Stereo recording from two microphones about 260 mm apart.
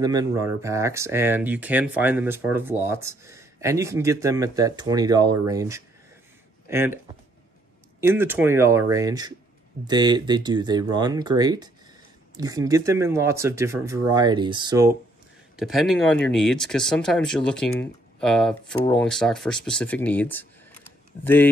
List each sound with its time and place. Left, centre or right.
0.0 s speech: centre
8.0 s speech: centre
15.5 s speech: centre